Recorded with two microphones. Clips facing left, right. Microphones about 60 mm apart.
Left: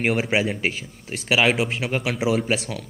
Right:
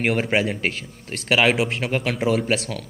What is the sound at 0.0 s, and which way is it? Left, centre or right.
A man's voice, centre.